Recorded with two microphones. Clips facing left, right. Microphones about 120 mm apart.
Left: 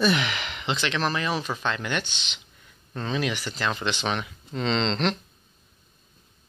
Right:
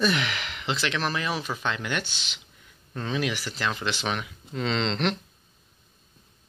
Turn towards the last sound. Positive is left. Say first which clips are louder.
# left 2 dB
turn(degrees=-10)  # may be behind; listen again after turning